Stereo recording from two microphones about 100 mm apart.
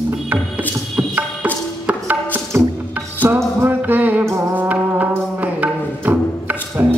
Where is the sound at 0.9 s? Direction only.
15° right (ahead or behind).